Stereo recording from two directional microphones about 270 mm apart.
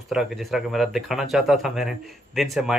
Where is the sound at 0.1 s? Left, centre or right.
Centre.